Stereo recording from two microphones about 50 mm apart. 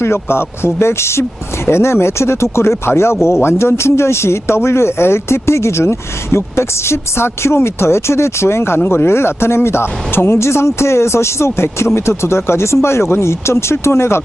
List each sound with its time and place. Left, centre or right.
0.0 s speech: left